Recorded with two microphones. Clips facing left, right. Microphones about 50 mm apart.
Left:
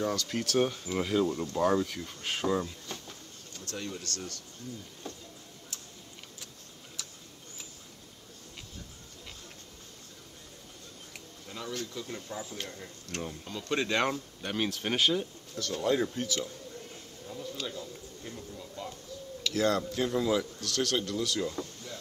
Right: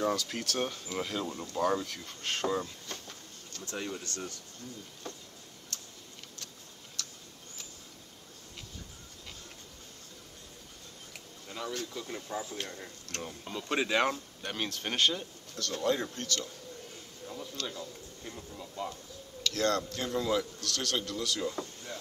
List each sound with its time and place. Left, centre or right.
0.0 s speech: centre
1.6 s a sound: centre
3.6 s speech: centre
5.7 s tick-tock: centre
7.0 s tick-tock: centre
11.4 s speech: centre
13.4 s speech: centre
17.6 s speech: centre
19.4 s speech: centre